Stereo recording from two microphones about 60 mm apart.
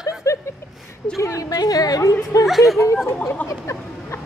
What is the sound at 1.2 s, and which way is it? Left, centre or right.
A woman's voice, left.